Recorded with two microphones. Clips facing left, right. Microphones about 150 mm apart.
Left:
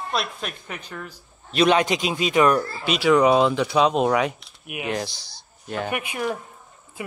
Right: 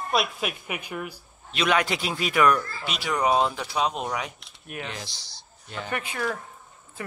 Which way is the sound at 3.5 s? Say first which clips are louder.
Left 8 dB; 80° left.